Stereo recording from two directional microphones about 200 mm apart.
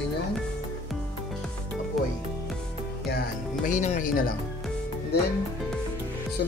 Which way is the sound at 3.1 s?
40° left (ahead or behind).